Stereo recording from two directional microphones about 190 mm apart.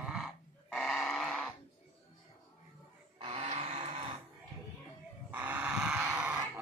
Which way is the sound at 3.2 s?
30° right (ahead or behind).